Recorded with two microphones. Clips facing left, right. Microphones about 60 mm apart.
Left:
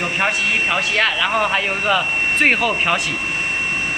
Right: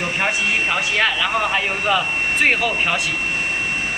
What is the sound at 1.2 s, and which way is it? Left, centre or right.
Speech, centre.